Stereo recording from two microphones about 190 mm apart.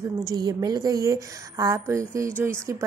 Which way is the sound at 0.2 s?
20° right (ahead or behind).